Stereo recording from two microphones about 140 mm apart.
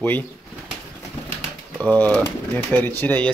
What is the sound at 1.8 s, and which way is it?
Speech, 10° left (ahead or behind).